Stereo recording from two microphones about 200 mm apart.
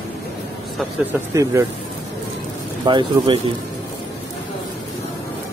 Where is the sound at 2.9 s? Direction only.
25° right (ahead or behind).